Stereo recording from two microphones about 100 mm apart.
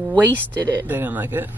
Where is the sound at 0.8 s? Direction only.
20° right (ahead or behind).